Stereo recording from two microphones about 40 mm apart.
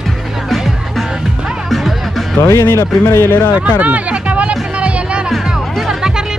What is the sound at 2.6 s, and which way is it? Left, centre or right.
Speech, left.